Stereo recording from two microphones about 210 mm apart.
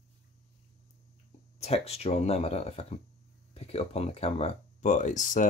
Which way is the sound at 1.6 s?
30° left (ahead or behind).